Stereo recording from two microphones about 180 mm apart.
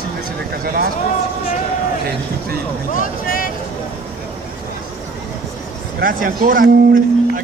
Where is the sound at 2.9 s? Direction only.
50° left (ahead or behind).